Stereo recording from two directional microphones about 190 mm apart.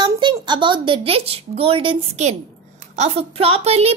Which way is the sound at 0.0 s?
25° right (ahead or behind).